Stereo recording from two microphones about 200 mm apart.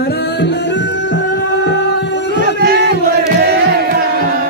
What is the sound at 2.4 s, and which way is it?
Music, 55° right (ahead or behind).